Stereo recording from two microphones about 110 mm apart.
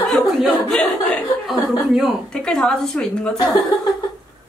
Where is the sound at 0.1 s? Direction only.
5° left (ahead or behind).